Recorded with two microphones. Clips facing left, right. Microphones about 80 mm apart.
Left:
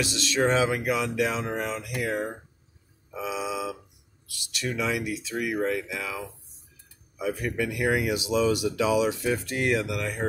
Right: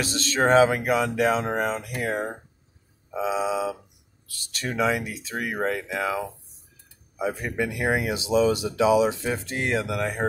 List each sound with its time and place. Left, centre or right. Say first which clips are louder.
0.0 s speech: right 2 dB; right
3.1 s speech: right 6 dB; right